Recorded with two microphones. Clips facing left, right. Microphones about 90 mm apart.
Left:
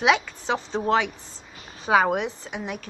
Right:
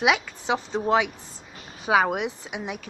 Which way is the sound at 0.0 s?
5° right (ahead or behind).